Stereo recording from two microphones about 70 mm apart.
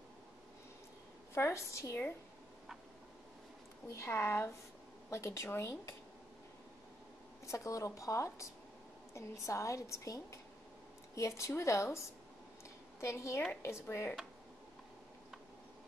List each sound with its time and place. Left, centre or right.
1.3 s a woman's voice: left
3.9 s a woman's voice: left
7.4 s a woman's voice: left
13.0 s a woman's voice: left